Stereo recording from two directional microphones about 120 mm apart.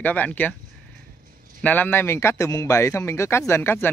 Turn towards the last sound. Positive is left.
turn(degrees=20)  # may be behind; listen again after turning